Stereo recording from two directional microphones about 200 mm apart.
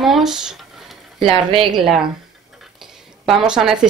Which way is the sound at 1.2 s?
25° right (ahead or behind).